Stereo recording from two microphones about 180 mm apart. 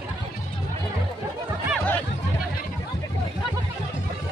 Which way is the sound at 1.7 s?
10° left (ahead or behind).